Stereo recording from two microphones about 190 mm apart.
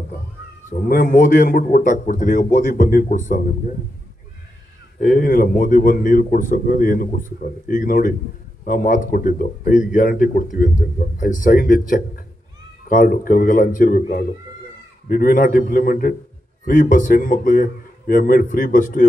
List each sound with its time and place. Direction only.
0.7 s a man's voice: 40° left (ahead or behind)
5.0 s a man's voice: 45° left (ahead or behind)